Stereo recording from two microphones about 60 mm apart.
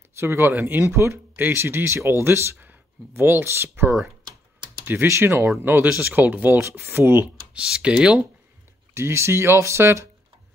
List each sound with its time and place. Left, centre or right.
0.2 s speech: right
2.6 s speech: right
5.2 s speech: right
7.5 s speech: centre
8.9 s speech: right